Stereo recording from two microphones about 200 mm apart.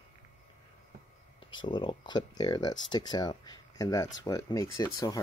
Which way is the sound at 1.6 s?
25° left (ahead or behind).